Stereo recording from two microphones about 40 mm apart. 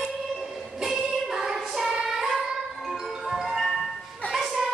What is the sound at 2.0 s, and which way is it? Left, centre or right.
Child singing, centre.